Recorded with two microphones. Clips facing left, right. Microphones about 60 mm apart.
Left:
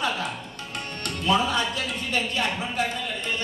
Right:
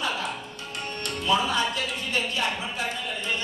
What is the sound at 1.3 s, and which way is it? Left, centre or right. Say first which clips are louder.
Speech: left 1 dB; left.